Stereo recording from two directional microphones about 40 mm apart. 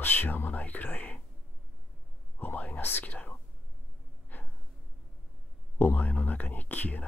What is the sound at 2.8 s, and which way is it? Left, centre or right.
Speech, left.